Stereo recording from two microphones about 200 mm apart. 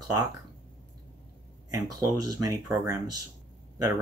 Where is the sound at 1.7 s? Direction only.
15° right (ahead or behind).